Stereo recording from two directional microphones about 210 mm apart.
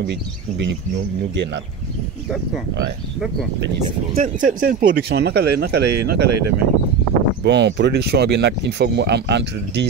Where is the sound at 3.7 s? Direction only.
40° right (ahead or behind).